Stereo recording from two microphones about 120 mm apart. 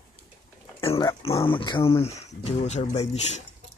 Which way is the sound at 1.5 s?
45° left (ahead or behind).